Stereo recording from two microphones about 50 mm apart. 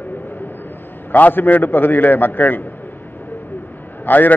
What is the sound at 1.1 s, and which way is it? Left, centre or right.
A man's voice, left.